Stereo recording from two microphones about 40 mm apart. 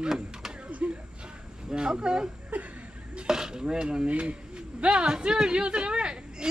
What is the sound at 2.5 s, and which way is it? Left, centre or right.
Chuckle, right.